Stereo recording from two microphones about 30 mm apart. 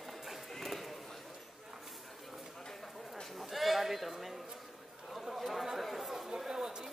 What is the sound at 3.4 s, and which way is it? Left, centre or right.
Sheep, centre.